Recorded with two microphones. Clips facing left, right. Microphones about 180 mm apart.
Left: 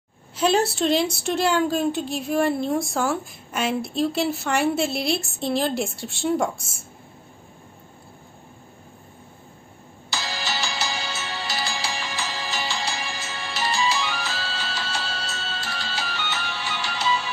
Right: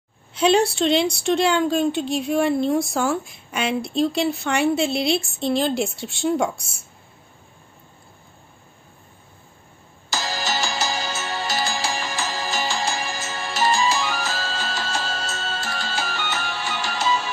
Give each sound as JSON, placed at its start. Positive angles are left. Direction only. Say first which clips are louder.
{"t": 0.3, "sound": "speech", "louder": "right 3 dB", "side_deg": 5}
{"t": 10.0, "sound": "music", "louder": "right 4 dB", "side_deg": -45}